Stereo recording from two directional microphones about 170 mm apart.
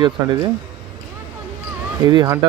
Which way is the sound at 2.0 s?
20° right (ahead or behind).